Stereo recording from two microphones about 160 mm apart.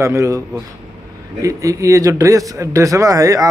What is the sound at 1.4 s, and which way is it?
Speech, 20° right (ahead or behind).